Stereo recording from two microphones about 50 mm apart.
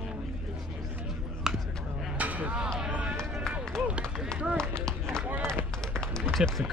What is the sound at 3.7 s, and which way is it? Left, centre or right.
Run, centre.